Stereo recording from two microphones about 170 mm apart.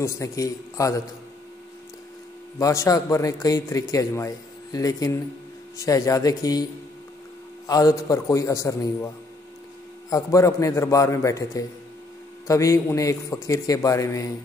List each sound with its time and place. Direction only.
0.0 s a man's voice: 20° left (ahead or behind)
2.6 s a man's voice: 20° left (ahead or behind)